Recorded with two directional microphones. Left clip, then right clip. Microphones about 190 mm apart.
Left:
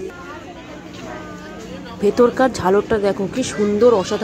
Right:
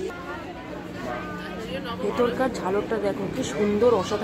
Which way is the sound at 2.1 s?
30° left (ahead or behind).